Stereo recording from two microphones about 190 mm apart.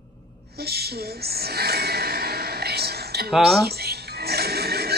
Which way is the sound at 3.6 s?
55° right (ahead or behind).